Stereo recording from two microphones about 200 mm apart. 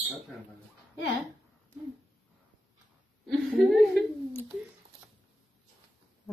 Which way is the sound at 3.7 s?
Centre (ahead or behind).